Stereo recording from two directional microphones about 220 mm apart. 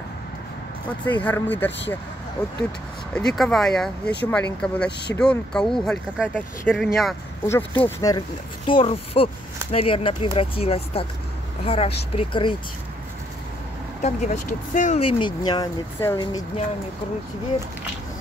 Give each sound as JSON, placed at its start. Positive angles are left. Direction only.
{"t": 1.0, "sound": "speech", "side_deg": 10}
{"t": 3.2, "sound": "speech", "side_deg": 5}
{"t": 7.4, "sound": "speech", "side_deg": 10}
{"t": 14.0, "sound": "speech", "side_deg": 35}